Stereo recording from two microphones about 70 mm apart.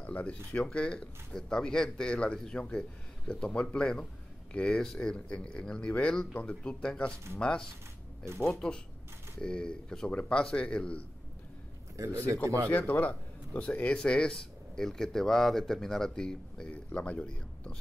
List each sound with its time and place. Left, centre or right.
0.0 s a sound: centre
0.6 s speech: centre
12.0 s speech: right
12.6 s speech: left